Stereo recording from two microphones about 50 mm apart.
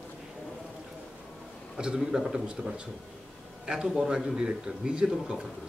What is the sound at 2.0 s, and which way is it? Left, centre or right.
Speech, centre.